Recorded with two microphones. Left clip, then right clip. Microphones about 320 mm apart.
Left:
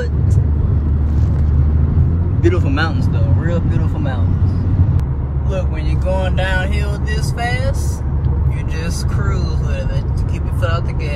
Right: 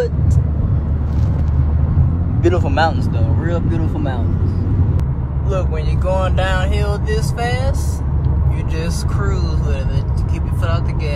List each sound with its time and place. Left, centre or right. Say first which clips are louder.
2.5 s speech: right 3 dB; centre
6.1 s speech: right 1 dB; centre